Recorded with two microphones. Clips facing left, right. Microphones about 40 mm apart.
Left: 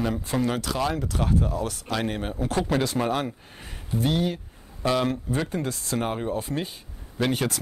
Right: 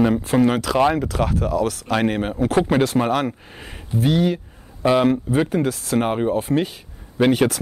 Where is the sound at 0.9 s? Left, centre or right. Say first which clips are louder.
Right 5 dB; right.